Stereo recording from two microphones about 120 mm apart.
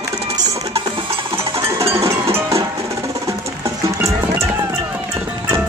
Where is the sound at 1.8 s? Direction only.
55° right (ahead or behind).